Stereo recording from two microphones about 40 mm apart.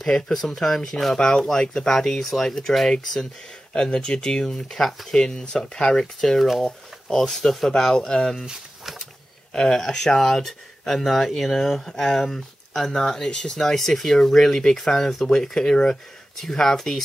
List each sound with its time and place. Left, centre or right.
0.0 s speech: centre
4.5 s speech: centre
9.5 s speech: centre
16.3 s speech: centre